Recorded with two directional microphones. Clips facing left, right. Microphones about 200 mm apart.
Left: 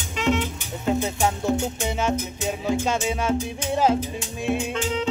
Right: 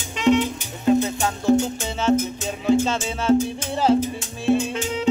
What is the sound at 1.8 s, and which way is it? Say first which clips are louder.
Music: right 4 dB; 10° left (ahead or behind).